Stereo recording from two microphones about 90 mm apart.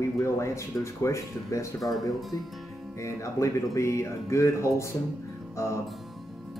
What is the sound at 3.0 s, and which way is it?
Speech, 35° left (ahead or behind).